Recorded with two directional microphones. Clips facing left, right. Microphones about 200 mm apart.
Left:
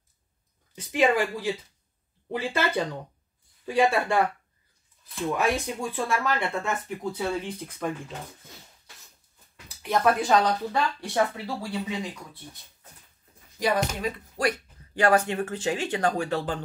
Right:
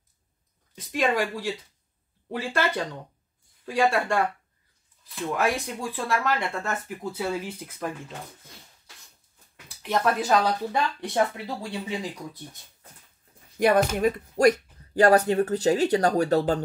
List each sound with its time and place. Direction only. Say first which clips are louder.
0.7 s speech: left 2 dB; centre (ahead or behind)
9.8 s speech: left 1 dB; centre (ahead or behind)
10.7 s speech: even; 20° right (ahead or behind)
13.6 s speech: right 5 dB; 55° right (ahead or behind)